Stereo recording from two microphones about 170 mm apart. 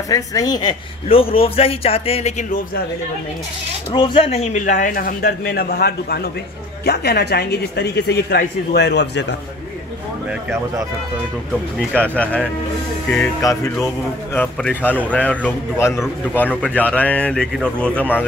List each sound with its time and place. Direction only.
0.1 s a woman's voice: 20° left (ahead or behind); by 2.4 s 40° left (ahead or behind)
3.9 s a man's voice: 30° left (ahead or behind); by 9.2 s 85° left
11.9 s speech: 10° left (ahead or behind)
13.4 s music: 20° left (ahead or behind)
14.3 s speech: 10° left (ahead or behind)